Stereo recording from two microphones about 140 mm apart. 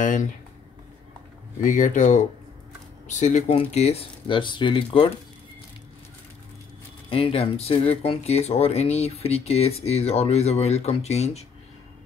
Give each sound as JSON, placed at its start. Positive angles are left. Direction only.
{"t": 0.0, "sound": "speech", "side_deg": 65}
{"t": 1.6, "sound": "speech", "side_deg": 65}
{"t": 7.1, "sound": "speech", "side_deg": 40}